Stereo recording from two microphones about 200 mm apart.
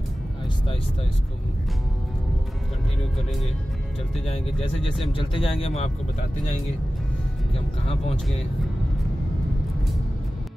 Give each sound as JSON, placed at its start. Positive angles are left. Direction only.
{"t": 4.6, "sound": "a man's voice", "side_deg": 25}